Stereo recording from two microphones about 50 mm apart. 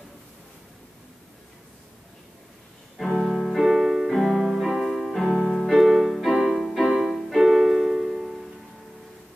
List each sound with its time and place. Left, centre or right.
3.1 s music: centre